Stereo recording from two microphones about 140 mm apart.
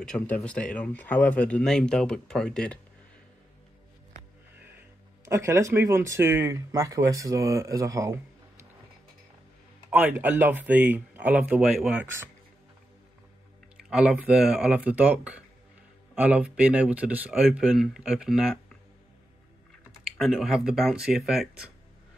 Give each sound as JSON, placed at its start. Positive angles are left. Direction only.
{"t": 0.0, "sound": "speech", "side_deg": 5}
{"t": 4.7, "sound": "speech", "side_deg": -20}
{"t": 9.8, "sound": "speech", "side_deg": -10}
{"t": 13.7, "sound": "speech", "side_deg": -5}
{"t": 20.2, "sound": "speech", "side_deg": -5}